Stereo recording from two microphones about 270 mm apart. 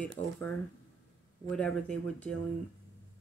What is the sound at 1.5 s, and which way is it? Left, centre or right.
Speech, centre.